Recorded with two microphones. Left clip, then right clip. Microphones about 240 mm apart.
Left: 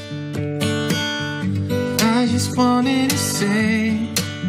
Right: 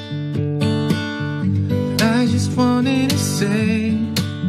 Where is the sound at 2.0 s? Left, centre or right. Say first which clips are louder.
Right 1 dB; centre.